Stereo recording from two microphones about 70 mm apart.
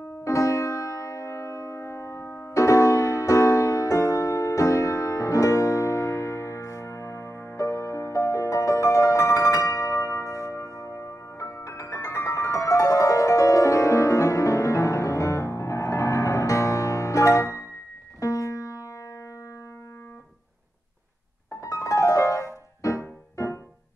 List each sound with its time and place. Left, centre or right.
0.2 s music: left
21.5 s music: left